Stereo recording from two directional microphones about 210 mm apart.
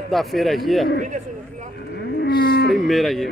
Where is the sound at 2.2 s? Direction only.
50° left (ahead or behind).